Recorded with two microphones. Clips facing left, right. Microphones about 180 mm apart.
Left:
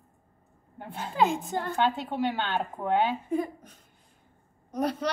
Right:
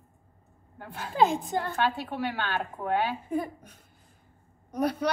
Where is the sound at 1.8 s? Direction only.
20° left (ahead or behind).